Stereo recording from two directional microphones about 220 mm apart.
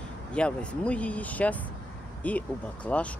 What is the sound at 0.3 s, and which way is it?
Speech, 5° left (ahead or behind).